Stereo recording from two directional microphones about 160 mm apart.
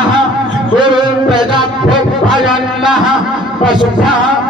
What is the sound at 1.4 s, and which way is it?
Music, 30° right (ahead or behind).